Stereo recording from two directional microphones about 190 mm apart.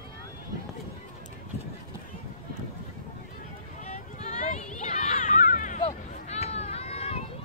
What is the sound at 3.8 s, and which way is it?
Run, 40° left (ahead or behind).